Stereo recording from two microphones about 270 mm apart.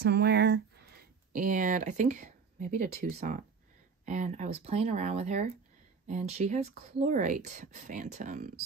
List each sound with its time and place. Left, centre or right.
0.0 s speech: right